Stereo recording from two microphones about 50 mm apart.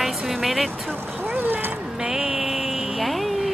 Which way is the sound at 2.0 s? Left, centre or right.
Centre.